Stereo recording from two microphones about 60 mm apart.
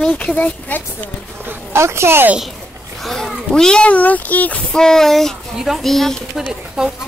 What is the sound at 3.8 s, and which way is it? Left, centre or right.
Speech, left.